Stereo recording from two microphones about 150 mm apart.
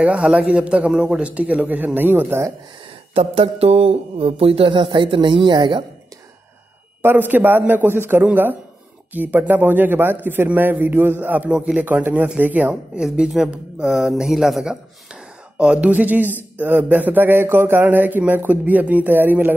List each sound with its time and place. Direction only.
0.0 s a man's voice: 5° right (ahead or behind)
3.2 s speech: 40° right (ahead or behind)
7.0 s a man's voice: 15° right (ahead or behind)